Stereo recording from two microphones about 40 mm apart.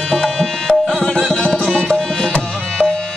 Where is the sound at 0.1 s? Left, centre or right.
Centre.